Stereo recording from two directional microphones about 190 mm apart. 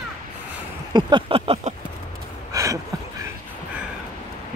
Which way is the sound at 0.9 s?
25° right (ahead or behind).